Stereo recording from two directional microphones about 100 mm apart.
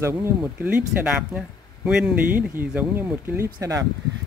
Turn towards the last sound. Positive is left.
turn(degrees=-30)  # may be behind; listen again after turning